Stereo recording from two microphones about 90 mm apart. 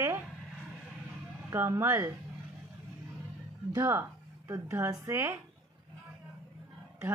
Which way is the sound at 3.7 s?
40° right (ahead or behind).